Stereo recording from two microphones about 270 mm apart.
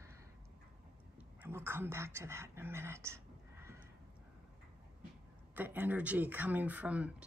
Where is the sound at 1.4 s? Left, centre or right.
Centre.